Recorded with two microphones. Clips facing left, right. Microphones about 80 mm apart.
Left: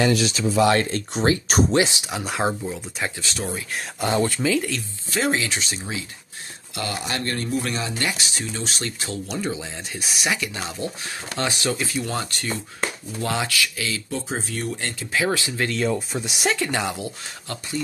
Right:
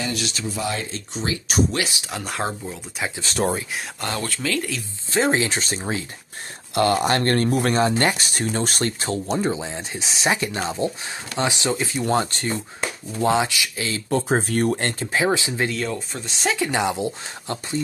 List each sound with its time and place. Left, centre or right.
0.6 s speech: left
1.2 s speech: left
1.7 s speech: left
2.0 s speech: centre
3.2 s speech: right
4.1 s speech: centre
4.6 s speech: centre
5.1 s speech: right
12.0 s speech: right
13.8 s speech: right
15.1 s speech: right
15.9 s speech: centre
16.5 s speech: centre